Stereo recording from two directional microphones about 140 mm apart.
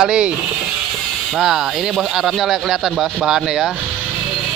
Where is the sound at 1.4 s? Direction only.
5° right (ahead or behind).